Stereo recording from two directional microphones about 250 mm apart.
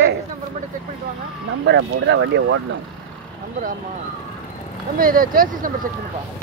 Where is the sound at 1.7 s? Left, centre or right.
Right.